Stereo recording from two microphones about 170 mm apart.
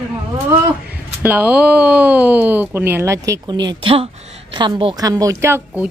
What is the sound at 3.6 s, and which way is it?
A woman's voice, 30° right (ahead or behind).